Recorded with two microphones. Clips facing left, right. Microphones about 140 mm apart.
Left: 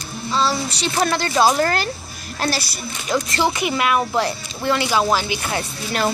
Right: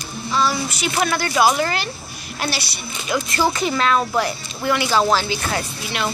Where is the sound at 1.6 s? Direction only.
45° left (ahead or behind).